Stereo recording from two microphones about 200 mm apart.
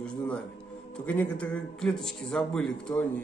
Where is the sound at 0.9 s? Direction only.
10° left (ahead or behind).